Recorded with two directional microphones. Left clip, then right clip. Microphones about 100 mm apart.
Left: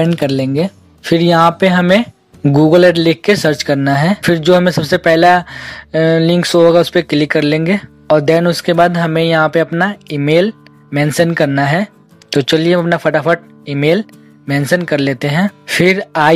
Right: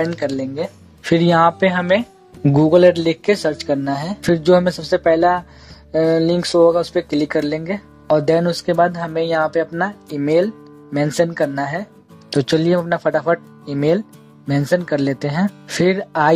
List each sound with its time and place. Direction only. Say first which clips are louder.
0.0 s speech: left 6 dB; 10° left (ahead or behind)
1.0 s speech: left 4 dB; 20° left (ahead or behind)